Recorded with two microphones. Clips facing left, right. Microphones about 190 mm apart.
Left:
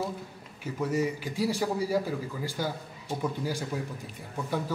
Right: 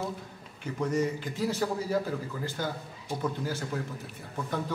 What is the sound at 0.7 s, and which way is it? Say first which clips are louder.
A man's voice: even; 5° left (ahead or behind).